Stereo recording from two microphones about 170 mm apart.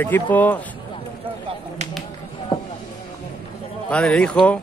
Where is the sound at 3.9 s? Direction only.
5° left (ahead or behind).